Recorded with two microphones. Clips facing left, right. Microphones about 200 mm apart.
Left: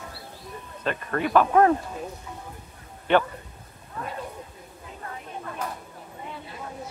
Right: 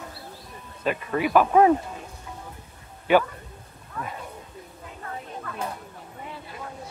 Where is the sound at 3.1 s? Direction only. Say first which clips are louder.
Right 2 dB; 10° right (ahead or behind).